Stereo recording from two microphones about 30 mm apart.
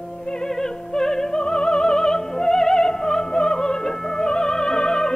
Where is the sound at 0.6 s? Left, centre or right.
Centre.